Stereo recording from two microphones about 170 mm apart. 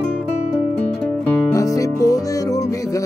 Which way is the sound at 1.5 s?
20° left (ahead or behind).